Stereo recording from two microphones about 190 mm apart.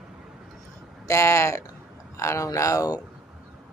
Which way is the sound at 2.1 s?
15° left (ahead or behind).